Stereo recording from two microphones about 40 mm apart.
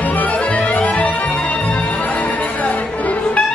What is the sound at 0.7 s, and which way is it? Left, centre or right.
Music, left.